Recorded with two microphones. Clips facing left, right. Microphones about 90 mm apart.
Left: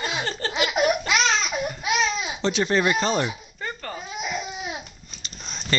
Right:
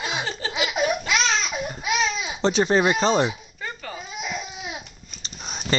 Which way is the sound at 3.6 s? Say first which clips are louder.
Left 1 dB; 5° right (ahead or behind).